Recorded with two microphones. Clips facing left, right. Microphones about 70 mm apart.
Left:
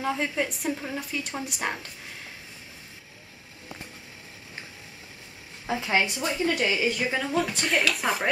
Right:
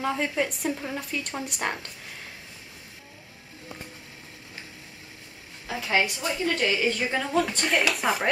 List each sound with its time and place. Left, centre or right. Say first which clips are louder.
0.0 s speech: right 1 dB; centre
5.7 s a woman's voice: even; left; by 8.3 s centre